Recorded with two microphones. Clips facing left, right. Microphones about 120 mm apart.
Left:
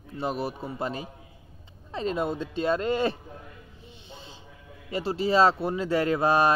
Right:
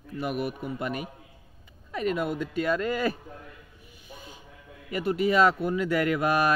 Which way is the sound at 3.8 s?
25° left (ahead or behind).